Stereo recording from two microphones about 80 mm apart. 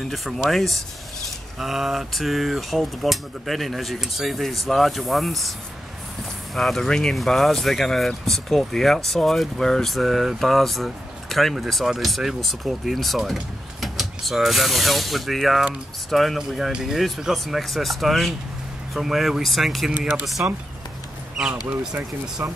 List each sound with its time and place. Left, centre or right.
0.1 s speech: centre
6.5 s speech: centre
20.4 s speech: centre
22.4 s speech: right